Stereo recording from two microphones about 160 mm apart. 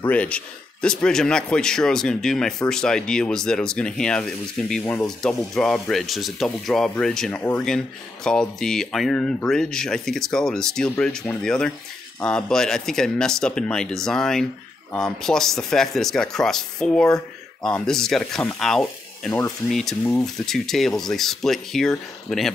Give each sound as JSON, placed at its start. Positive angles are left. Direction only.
{"t": 0.0, "sound": "speech", "side_deg": 10}